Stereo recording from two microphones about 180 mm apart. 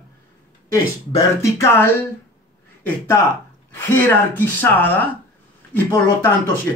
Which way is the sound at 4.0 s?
10° left (ahead or behind).